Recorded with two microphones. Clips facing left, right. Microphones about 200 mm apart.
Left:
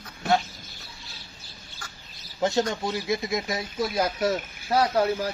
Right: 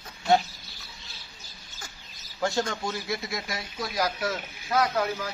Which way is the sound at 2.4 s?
20° left (ahead or behind).